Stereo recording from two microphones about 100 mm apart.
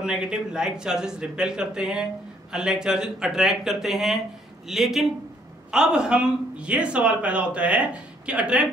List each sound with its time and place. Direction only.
0.0 s a man's voice: 10° right (ahead or behind)